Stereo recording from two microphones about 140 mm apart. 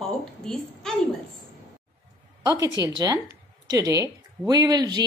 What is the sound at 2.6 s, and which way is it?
A woman's voice, 25° right (ahead or behind).